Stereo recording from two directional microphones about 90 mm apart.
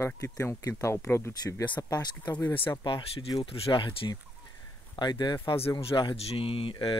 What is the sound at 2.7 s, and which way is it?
Speech, 60° left (ahead or behind).